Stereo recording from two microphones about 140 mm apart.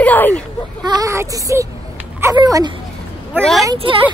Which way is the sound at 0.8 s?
25° right (ahead or behind).